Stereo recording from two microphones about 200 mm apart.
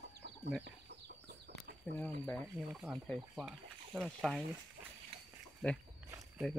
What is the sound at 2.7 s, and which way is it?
Speech, 5° right (ahead or behind).